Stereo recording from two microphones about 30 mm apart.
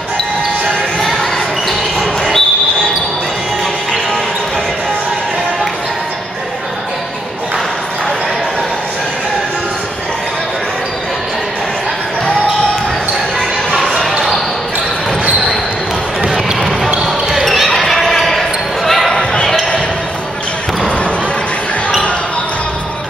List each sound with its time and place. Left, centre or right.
2.0 s a sound: centre
16.2 s basketball bounce: centre
16.5 s basketball bounce: centre
17.0 s basketball bounce: centre
17.6 s basketball bounce: centre